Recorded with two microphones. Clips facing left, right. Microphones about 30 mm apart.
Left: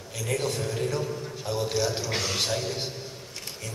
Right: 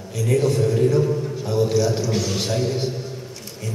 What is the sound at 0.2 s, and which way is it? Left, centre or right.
A man's voice, centre.